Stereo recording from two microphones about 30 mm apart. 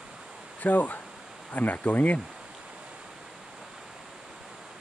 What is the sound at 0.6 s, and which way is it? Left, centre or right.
Speech, left.